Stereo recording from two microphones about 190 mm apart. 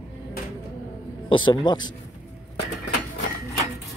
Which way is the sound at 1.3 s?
25° left (ahead or behind).